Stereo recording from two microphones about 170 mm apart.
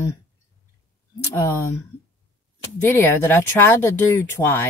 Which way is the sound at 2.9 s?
15° left (ahead or behind).